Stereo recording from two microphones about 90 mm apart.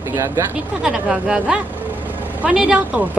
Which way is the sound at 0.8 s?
10° right (ahead or behind).